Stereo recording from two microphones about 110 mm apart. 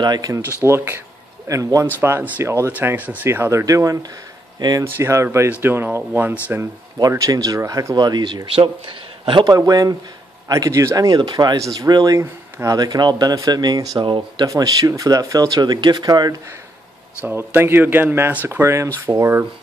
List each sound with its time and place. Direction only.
0.0 s speech: 35° right (ahead or behind)
0.7 s speech: 20° right (ahead or behind); by 4.8 s 40° right (ahead or behind)
4.8 s speech: 25° right (ahead or behind)
7.0 s speech: 30° right (ahead or behind); by 9.5 s 50° right (ahead or behind)
9.5 s speech: 35° right (ahead or behind)
12.7 s speech: 40° right (ahead or behind)
14.5 s speech: 30° right (ahead or behind)
17.2 s speech: 15° right (ahead or behind)